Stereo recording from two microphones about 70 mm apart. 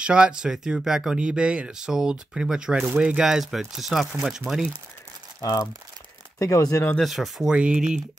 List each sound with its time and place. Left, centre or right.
0.0 s speech: centre
5.4 s speech: left
7.0 s speech: centre
7.5 s speech: centre